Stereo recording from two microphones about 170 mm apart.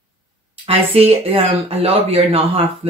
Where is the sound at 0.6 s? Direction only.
35° right (ahead or behind).